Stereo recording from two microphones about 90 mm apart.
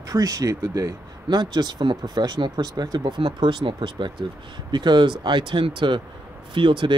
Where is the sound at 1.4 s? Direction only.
55° right (ahead or behind).